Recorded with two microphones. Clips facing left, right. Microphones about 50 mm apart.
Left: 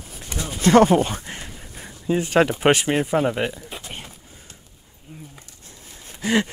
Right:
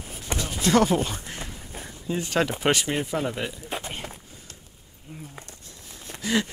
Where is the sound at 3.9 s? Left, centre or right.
Right.